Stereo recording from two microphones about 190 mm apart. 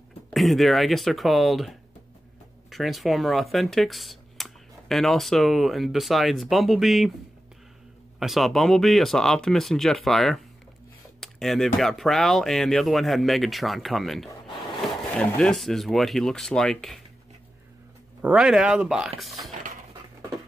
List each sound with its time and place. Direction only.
0.3 s speech: centre (ahead or behind)
8.2 s speech: centre (ahead or behind)
18.2 s speech: 5° right (ahead or behind)